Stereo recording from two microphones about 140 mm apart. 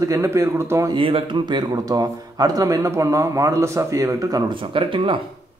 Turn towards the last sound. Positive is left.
turn(degrees=-40)  # may be behind; listen again after turning